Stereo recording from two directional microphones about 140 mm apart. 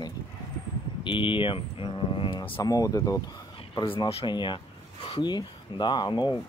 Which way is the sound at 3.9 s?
40° left (ahead or behind).